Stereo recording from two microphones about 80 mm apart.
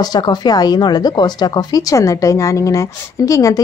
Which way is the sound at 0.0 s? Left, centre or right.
Left.